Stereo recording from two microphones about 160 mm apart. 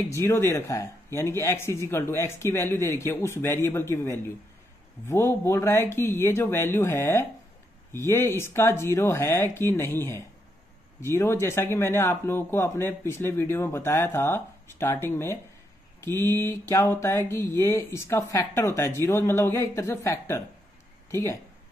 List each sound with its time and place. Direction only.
0.1 s speech: 15° left (ahead or behind)